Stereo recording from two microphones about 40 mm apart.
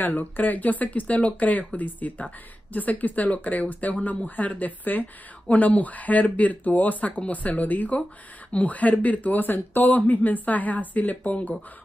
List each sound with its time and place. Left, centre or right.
0.0 s speech: left